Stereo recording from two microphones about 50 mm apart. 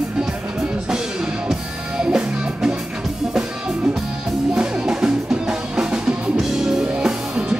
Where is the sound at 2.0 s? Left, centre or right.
Centre.